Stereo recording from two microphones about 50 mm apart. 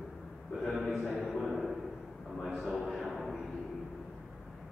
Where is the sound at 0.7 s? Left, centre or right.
Centre.